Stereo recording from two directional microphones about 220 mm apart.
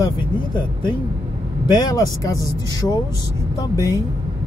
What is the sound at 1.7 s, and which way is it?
Speech, 15° left (ahead or behind).